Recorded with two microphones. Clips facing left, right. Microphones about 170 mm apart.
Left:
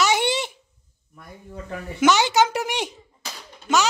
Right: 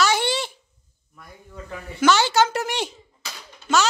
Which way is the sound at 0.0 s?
20° left (ahead or behind).